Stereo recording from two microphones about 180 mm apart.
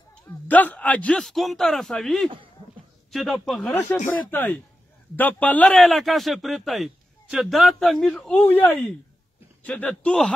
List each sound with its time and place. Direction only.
0.3 s a man's voice: 10° left (ahead or behind)
2.2 s speech: 30° right (ahead or behind)
3.1 s a man's voice: centre (ahead or behind)